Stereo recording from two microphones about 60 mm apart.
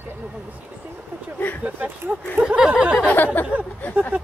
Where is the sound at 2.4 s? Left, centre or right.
Centre.